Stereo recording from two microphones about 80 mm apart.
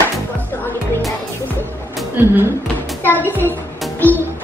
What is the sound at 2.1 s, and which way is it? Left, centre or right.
Speech, right.